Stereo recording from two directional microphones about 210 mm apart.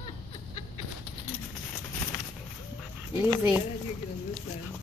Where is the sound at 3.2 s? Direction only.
10° right (ahead or behind).